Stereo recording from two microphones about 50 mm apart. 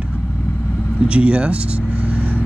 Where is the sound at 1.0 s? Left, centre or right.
Right.